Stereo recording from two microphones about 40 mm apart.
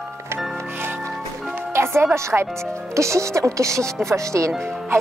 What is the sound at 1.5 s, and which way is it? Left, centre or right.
Music, right.